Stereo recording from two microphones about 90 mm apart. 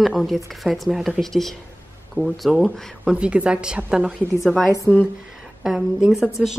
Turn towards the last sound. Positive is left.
turn(degrees=-5)  # may be behind; listen again after turning